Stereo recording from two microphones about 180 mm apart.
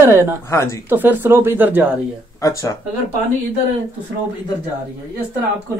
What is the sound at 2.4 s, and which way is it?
Speech, 20° left (ahead or behind).